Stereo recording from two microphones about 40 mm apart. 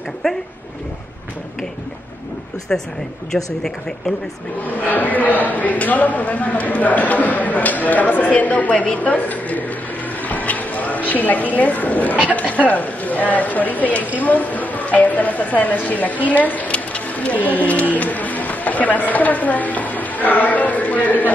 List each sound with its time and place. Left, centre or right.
0.2 s speech: centre
2.7 s speech: left
3.3 s speech: centre
4.6 s a man's voice: left
10.2 s a sound: left
12.3 s a man's voice: left
16.7 s a sound: left